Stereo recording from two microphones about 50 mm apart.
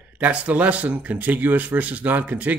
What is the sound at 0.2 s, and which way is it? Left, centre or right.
Speech, right.